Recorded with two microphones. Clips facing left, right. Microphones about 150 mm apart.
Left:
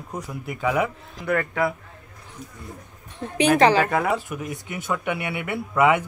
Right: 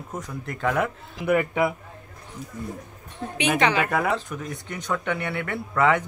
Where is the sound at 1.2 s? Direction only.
20° right (ahead or behind).